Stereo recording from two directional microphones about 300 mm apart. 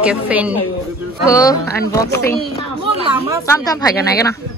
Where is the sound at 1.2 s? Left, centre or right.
Centre.